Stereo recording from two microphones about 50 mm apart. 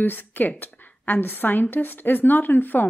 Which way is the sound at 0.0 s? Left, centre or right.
Left.